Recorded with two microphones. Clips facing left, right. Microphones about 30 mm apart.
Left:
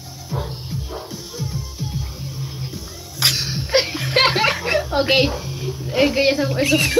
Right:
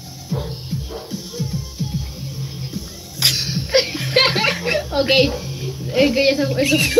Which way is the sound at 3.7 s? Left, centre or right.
Right.